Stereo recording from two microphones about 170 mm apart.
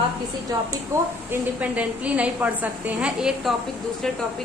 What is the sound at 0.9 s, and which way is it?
A woman's voice, 15° right (ahead or behind).